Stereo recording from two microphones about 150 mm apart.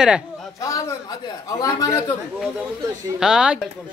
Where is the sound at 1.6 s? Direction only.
20° left (ahead or behind).